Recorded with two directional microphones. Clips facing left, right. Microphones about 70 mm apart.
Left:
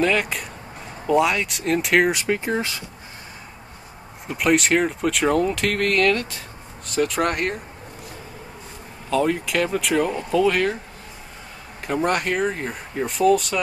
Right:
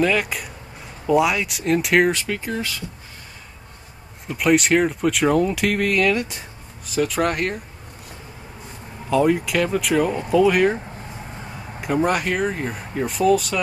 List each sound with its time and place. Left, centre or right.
0.0 s speech: centre
2.2 s speech: left
4.3 s speech: centre
9.1 s speech: centre
11.8 s speech: centre